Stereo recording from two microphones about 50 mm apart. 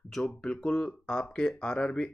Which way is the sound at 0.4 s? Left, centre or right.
Left.